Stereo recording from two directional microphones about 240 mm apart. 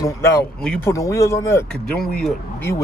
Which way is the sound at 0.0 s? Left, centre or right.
Centre.